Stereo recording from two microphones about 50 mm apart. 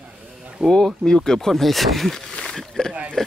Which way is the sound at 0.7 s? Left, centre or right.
Centre.